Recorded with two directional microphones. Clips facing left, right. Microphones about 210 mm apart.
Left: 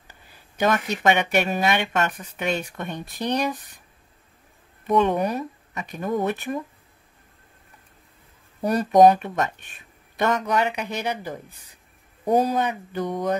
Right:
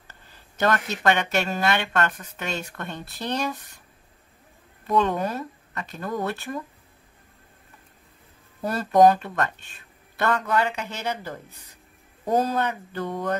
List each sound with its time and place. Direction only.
0.1 s speech: 10° left (ahead or behind)
4.8 s speech: 20° left (ahead or behind)
8.5 s speech: 15° left (ahead or behind)